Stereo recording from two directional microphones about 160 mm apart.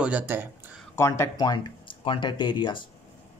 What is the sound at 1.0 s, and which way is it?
Speech, 15° left (ahead or behind).